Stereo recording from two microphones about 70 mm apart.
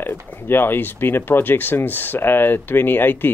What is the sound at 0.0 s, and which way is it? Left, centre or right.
Speech, left.